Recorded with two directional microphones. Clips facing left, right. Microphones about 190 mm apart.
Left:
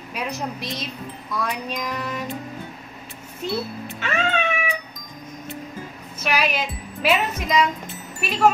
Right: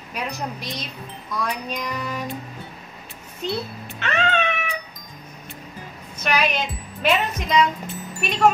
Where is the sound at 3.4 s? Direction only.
5° left (ahead or behind).